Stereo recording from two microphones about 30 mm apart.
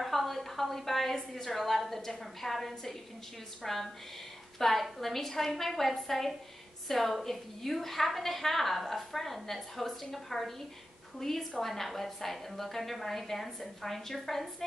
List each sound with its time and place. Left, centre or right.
0.0 s a woman's voice: centre